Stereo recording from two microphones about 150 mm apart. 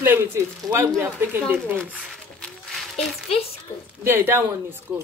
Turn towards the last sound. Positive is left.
turn(degrees=-15)  # may be behind; listen again after turning